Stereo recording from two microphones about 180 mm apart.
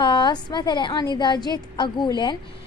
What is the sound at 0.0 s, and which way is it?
A woman's voice, 25° left (ahead or behind).